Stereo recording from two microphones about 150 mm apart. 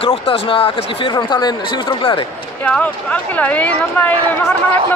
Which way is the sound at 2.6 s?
10° left (ahead or behind).